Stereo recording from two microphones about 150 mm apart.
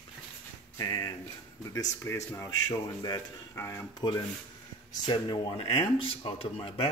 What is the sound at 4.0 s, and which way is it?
Speech, 30° left (ahead or behind).